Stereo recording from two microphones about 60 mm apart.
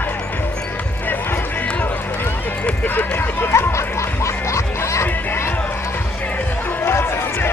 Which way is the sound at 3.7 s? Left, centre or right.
Left.